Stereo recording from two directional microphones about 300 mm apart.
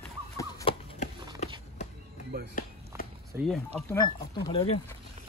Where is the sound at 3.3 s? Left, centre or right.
Centre.